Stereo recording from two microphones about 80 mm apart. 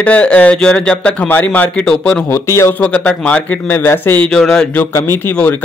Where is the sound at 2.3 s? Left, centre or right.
Left.